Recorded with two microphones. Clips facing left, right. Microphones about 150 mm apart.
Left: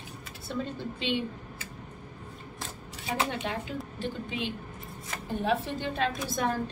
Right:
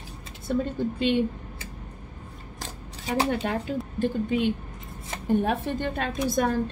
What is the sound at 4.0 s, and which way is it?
A woman's voice, 50° right (ahead or behind).